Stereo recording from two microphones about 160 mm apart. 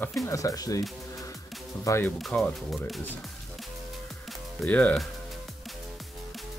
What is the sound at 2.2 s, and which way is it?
Speech, 5° left (ahead or behind).